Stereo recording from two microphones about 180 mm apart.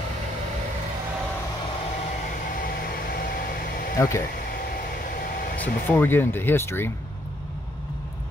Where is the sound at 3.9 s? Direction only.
15° left (ahead or behind).